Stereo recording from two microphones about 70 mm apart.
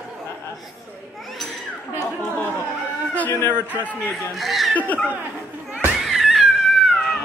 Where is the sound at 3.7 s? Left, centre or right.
Left.